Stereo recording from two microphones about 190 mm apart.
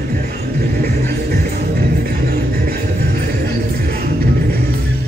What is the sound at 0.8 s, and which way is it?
Music, 55° right (ahead or behind).